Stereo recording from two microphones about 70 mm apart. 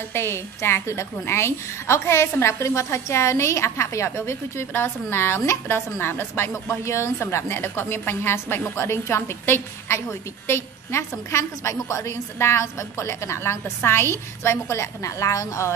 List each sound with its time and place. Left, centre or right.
0.1 s a woman's voice: left